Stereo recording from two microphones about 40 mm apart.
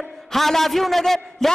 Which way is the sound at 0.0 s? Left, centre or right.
Centre.